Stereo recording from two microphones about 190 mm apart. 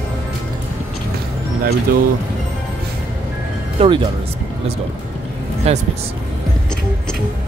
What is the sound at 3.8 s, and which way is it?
Speech, 30° right (ahead or behind).